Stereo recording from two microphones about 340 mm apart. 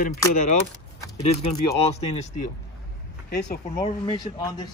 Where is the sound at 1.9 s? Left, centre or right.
Centre.